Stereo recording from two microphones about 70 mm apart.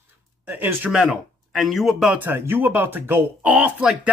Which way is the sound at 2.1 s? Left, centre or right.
Right.